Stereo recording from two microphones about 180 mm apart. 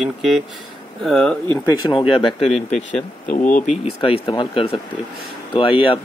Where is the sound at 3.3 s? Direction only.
45° left (ahead or behind).